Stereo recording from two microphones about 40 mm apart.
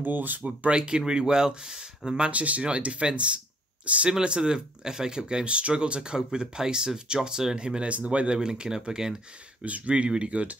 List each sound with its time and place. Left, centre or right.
0.0 s speech: right
0.7 s speech: right
4.2 s speech: right
9.7 s speech: right
10.0 s speech: right